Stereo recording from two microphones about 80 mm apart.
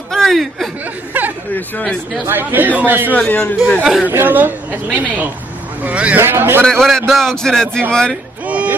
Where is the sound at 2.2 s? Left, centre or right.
Right.